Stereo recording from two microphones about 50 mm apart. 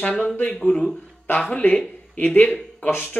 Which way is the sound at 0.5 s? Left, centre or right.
Centre.